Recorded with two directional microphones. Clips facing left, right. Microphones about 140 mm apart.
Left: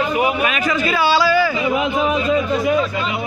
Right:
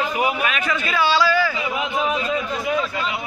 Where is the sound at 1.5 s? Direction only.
40° left (ahead or behind).